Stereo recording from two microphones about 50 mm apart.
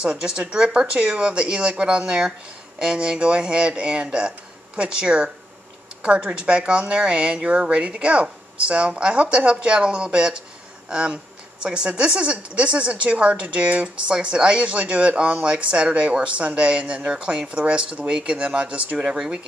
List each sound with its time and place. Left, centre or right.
0.0 s a woman's voice: centre
19.0 s speech: centre